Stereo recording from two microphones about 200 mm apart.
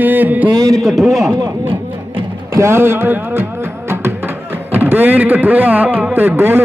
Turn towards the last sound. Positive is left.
turn(degrees=-10)  # may be behind; listen again after turning